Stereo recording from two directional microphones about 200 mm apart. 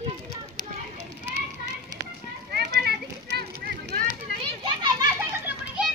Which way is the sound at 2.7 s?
55° right (ahead or behind).